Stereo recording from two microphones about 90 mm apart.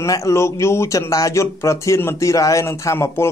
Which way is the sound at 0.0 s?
35° left (ahead or behind).